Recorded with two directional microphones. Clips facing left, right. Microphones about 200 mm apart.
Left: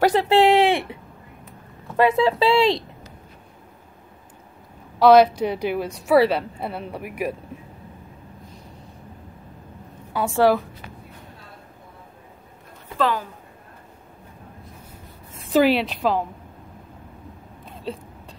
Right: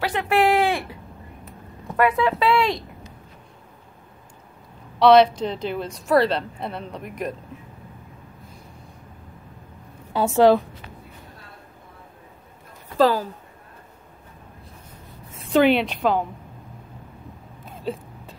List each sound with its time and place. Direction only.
0.0 s a sound: 35° left (ahead or behind)
2.0 s speech: 25° left (ahead or behind)
4.9 s speech: 5° left (ahead or behind)
10.1 s a woman's voice: 20° right (ahead or behind)
12.9 s speech: 35° right (ahead or behind)
15.4 s a woman's voice: centre (ahead or behind)
17.6 s vehicle: centre (ahead or behind)